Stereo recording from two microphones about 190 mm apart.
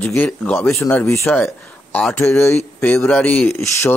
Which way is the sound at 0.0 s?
10° left (ahead or behind).